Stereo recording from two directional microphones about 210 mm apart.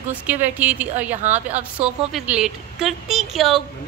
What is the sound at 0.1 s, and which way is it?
A woman's voice, 10° right (ahead or behind).